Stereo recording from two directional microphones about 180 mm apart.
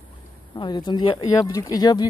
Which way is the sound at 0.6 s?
25° left (ahead or behind).